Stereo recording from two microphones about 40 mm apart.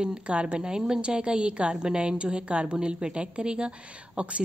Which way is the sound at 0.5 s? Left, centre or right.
Centre.